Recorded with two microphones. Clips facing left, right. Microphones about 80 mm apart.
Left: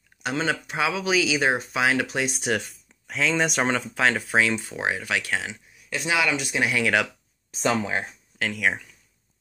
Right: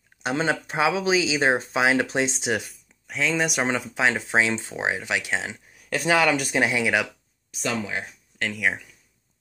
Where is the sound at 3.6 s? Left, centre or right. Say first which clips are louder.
Even; centre.